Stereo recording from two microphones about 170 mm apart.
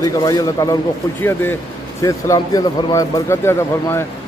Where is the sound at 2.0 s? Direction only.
20° left (ahead or behind).